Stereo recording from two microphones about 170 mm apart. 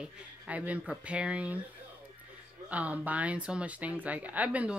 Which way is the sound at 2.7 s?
10° right (ahead or behind).